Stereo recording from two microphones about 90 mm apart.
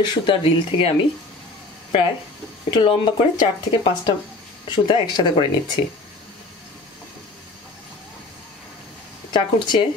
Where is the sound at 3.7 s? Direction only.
70° left (ahead or behind).